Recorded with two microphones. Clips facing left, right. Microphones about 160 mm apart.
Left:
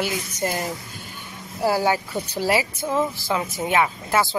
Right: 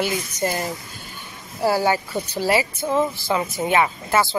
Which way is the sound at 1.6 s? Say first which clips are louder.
Right 1 dB; 10° left (ahead or behind).